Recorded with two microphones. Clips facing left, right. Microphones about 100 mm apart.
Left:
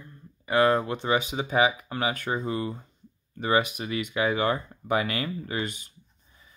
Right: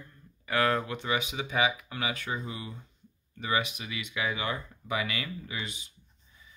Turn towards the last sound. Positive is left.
turn(degrees=50)  # may be behind; listen again after turning